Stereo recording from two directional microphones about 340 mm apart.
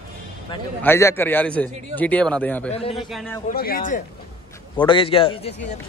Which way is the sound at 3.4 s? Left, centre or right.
Left.